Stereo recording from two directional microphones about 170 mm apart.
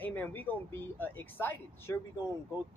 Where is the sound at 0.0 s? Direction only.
10° left (ahead or behind).